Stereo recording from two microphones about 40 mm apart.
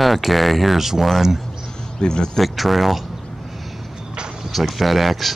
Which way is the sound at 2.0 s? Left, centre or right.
Centre.